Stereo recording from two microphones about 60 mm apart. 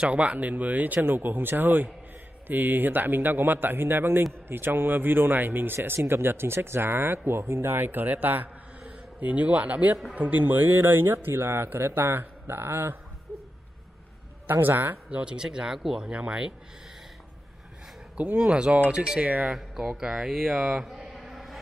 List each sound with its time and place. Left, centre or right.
0.0 s speech: right
14.5 s speech: right
15.0 s speech: centre
18.1 s speech: right
19.5 s a man's voice: centre